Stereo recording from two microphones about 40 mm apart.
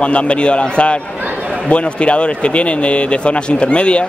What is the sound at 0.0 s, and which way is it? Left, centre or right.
A man's voice, left.